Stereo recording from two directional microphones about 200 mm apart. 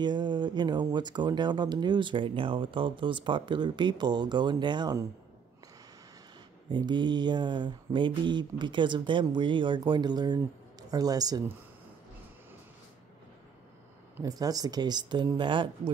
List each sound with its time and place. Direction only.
0.0 s speech: 20° right (ahead or behind)
6.7 s speech: 20° right (ahead or behind)
14.1 s speech: 20° right (ahead or behind)